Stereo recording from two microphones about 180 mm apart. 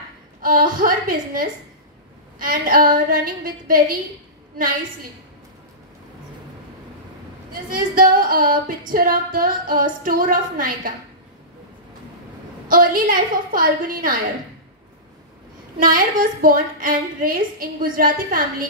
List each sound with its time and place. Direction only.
0.4 s female singing: 50° right (ahead or behind)
7.7 s female singing: 50° right (ahead or behind)
12.6 s female singing: 50° right (ahead or behind)
15.8 s female singing: 50° right (ahead or behind)